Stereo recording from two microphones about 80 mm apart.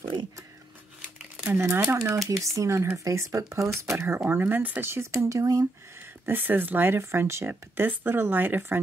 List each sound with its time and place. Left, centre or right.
1.5 s speech: right
5.1 s speech: right
6.2 s speech: right